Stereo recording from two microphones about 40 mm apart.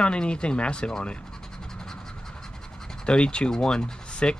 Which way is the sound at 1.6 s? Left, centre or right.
Centre.